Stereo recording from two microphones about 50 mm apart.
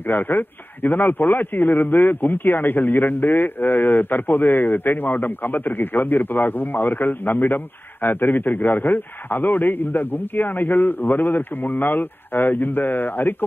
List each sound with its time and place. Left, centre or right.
0.1 s a man's voice: left